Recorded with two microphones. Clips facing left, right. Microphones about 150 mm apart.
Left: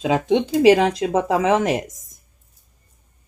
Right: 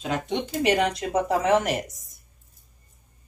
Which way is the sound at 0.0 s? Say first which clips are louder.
Left 9 dB; 90° left.